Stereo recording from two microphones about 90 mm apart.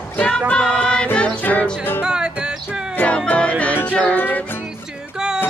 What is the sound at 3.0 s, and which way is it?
Music, 15° left (ahead or behind).